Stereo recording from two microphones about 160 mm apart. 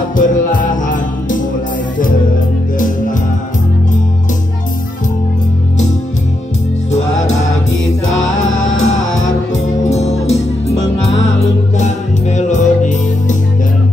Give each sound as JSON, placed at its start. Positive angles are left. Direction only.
{"t": 0.1, "sound": "music", "side_deg": 55}
{"t": 6.9, "sound": "music", "side_deg": 45}
{"t": 8.7, "sound": "music", "side_deg": 45}